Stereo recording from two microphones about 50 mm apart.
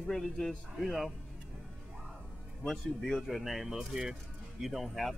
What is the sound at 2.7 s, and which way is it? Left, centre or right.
Speech, centre.